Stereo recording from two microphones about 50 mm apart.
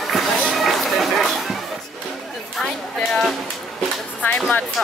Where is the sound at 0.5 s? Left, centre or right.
Centre.